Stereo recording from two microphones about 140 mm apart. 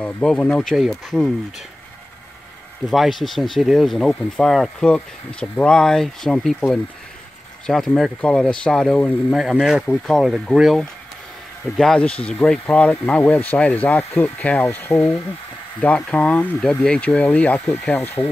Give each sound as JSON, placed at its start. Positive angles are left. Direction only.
{"t": 0.0, "sound": "speech", "side_deg": 10}
{"t": 2.9, "sound": "speech", "side_deg": 0}
{"t": 7.6, "sound": "speech", "side_deg": 5}